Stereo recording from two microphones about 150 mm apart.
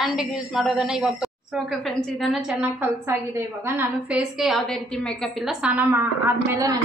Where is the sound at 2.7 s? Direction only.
15° right (ahead or behind).